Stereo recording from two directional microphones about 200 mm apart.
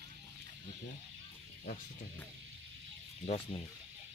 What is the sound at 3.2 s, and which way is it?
Speech, 30° left (ahead or behind).